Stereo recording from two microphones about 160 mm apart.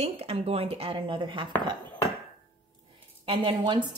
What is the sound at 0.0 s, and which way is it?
A woman's voice, 40° right (ahead or behind).